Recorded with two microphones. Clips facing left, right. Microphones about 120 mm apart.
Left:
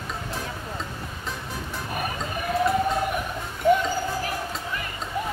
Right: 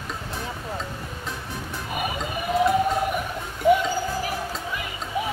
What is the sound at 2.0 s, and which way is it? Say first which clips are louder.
Music: right 2 dB; 10° right (ahead or behind).